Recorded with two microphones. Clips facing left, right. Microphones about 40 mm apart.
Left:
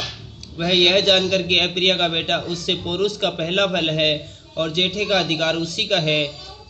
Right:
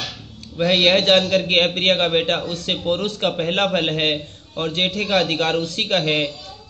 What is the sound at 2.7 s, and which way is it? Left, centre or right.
Speech, centre.